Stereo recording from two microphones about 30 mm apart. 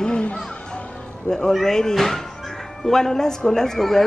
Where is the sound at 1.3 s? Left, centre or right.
Left.